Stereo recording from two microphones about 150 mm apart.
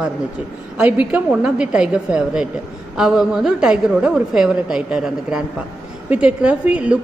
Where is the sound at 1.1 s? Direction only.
5° right (ahead or behind).